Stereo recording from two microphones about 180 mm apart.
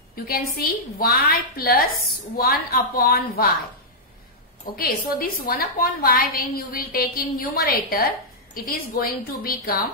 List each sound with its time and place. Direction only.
0.1 s a woman's voice: 55° left (ahead or behind)
4.7 s a woman's voice: 55° left (ahead or behind)